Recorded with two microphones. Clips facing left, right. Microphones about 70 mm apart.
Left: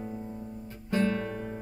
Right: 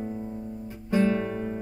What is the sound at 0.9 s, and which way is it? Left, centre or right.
Guitar, centre.